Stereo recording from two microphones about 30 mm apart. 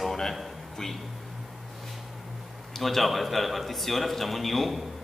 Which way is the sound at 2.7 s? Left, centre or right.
Centre.